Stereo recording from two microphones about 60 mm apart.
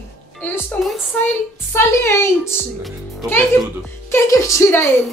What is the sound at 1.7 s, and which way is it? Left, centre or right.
Speech, left.